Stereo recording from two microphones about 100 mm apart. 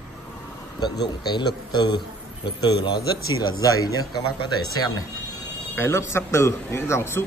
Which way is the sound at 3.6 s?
40° left (ahead or behind).